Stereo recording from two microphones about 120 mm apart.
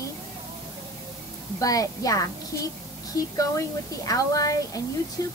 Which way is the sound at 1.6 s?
30° left (ahead or behind).